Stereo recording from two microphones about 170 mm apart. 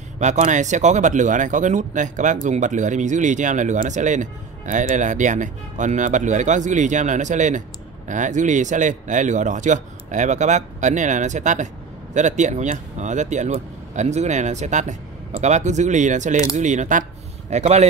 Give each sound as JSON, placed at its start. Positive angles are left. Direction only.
{"t": 0.2, "sound": "speech", "side_deg": -45}